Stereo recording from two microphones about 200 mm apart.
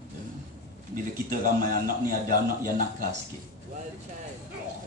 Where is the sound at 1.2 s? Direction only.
45° right (ahead or behind).